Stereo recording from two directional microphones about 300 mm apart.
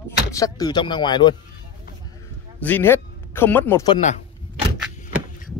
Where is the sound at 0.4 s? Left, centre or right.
Centre.